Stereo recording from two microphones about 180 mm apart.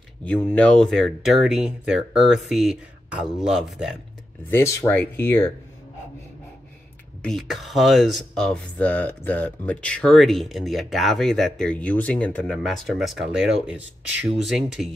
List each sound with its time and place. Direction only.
0.2 s speech: 10° left (ahead or behind)
4.5 s speech: 15° left (ahead or behind)
7.2 s speech: centre (ahead or behind)